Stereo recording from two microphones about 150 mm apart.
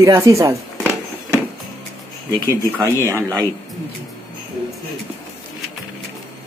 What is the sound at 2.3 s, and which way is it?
Speech, 20° right (ahead or behind).